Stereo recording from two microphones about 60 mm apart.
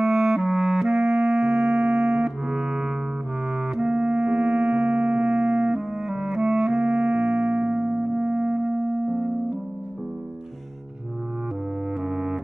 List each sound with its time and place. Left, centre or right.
0.0 s clarinet: centre
1.5 s music: centre
12.1 s music: centre